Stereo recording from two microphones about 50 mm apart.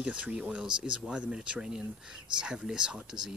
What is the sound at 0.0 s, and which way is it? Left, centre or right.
Speech, right.